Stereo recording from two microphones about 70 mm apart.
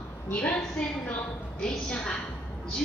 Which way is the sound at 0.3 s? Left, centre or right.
Centre.